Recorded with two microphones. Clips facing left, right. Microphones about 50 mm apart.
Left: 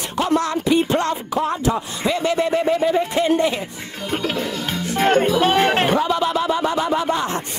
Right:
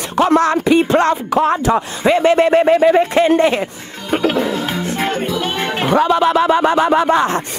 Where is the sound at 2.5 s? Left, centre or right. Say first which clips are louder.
Right 7 dB; right.